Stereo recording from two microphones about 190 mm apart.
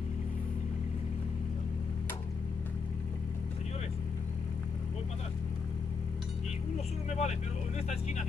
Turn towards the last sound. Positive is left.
turn(degrees=35)  # may be behind; listen again after turning